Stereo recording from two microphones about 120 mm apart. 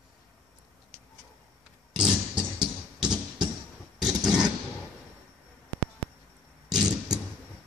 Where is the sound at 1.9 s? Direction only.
5° right (ahead or behind).